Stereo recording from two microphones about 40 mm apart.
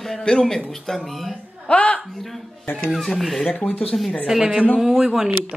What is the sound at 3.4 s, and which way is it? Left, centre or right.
Speech, left.